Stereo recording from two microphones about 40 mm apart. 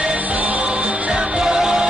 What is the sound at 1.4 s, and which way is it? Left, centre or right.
Music, centre.